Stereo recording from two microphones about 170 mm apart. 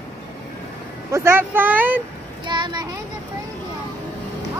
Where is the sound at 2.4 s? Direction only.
25° right (ahead or behind).